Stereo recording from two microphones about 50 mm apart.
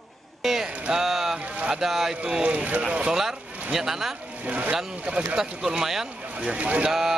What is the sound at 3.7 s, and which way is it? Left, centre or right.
Speech, centre.